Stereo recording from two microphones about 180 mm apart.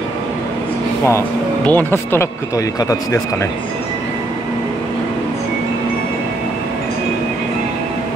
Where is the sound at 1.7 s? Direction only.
10° left (ahead or behind).